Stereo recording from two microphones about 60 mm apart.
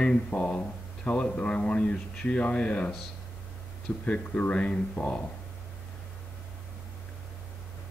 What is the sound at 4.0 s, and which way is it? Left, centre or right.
Speech, left.